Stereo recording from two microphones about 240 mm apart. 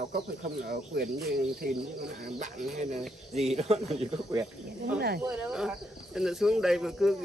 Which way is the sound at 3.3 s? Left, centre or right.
Right.